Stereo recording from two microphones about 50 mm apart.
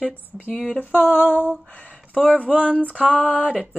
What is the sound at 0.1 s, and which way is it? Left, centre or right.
Speech, left.